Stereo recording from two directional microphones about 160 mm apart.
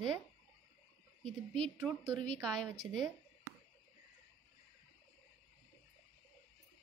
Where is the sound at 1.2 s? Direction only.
5° left (ahead or behind).